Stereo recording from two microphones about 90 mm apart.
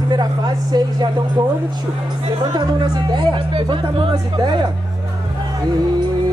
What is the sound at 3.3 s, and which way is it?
Speech, 65° right (ahead or behind).